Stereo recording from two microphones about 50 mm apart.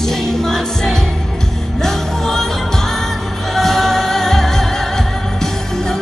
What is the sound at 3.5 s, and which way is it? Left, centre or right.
Music, centre.